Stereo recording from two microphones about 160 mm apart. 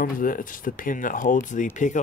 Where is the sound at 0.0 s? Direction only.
60° left (ahead or behind).